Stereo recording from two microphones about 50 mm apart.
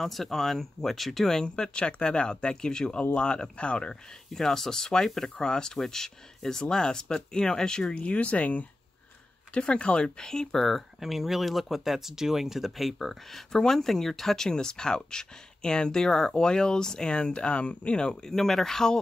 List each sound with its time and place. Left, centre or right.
0.0 s speech: centre
1.4 s speech: centre
4.3 s speech: centre